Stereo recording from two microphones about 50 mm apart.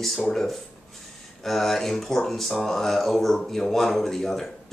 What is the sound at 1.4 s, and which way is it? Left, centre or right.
Speech, centre.